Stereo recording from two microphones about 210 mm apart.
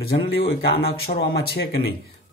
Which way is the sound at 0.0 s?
50° left (ahead or behind).